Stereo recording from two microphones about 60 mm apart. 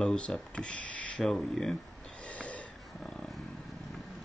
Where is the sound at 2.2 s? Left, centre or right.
Left.